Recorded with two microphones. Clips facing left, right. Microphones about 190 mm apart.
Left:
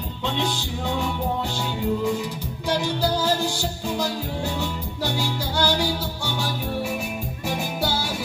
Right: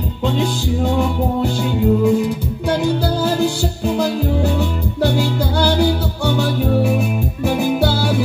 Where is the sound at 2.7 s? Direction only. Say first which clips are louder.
Right 6 dB; 55° right (ahead or behind).